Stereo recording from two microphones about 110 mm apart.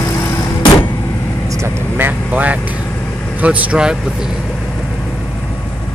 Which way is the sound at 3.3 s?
15° right (ahead or behind).